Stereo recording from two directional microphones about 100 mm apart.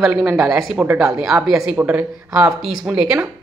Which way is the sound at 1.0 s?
5° right (ahead or behind).